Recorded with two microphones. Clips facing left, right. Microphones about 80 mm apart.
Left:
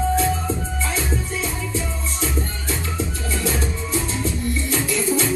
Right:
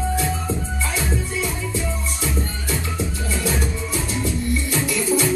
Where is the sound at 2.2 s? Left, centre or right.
Right.